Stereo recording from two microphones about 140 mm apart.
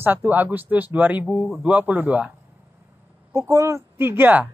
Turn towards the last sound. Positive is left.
turn(degrees=-15)  # may be behind; listen again after turning